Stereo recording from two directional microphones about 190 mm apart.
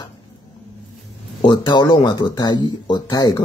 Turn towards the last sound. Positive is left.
turn(degrees=20)  # may be behind; listen again after turning